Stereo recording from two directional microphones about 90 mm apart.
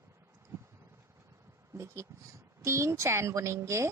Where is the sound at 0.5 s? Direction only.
30° right (ahead or behind).